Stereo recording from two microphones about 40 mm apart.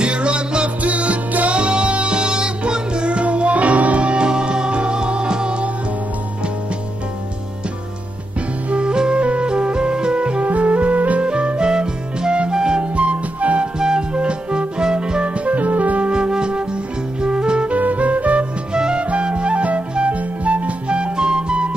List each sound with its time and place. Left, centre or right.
0.0 s music: right
8.6 s music: right
11.2 s music: right
12.9 s music: right
13.7 s music: centre
15.3 s music: right
16.1 s flute: right
17.7 s music: right
18.7 s music: right